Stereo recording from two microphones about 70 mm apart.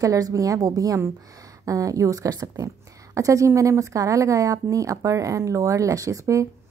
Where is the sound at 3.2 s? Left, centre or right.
Right.